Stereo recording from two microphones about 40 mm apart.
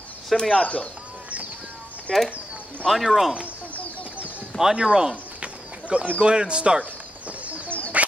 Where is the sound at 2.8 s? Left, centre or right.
Centre.